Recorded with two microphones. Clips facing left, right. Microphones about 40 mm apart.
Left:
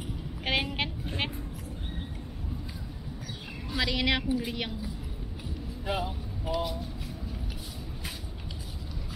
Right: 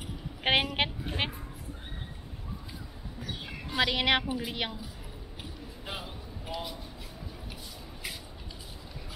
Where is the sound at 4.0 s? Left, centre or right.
Right.